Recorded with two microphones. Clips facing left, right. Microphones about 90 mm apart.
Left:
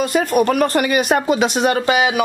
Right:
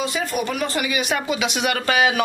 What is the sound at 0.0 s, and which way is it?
Speech, 50° left (ahead or behind).